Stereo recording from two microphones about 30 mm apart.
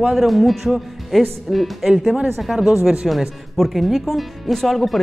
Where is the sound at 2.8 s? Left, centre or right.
Right.